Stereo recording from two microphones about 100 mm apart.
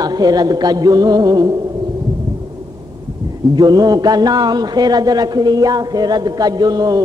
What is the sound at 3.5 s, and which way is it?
A man's voice, 40° right (ahead or behind).